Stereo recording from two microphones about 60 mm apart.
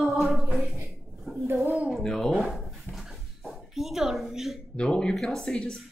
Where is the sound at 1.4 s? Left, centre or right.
Right.